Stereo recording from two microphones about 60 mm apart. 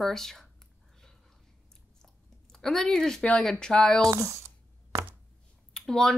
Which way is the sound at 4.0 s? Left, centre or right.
Right.